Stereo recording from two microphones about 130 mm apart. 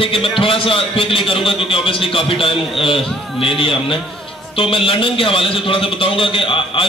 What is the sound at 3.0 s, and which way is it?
Speech, centre (ahead or behind).